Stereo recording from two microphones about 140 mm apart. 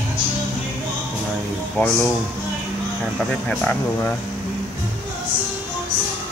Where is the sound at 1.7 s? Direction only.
10° left (ahead or behind).